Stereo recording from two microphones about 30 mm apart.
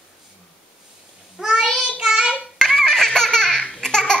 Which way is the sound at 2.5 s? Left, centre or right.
Centre.